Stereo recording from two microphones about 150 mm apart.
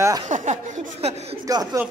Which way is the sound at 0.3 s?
55° right (ahead or behind).